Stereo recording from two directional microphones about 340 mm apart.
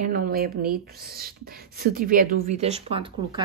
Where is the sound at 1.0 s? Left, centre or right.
Right.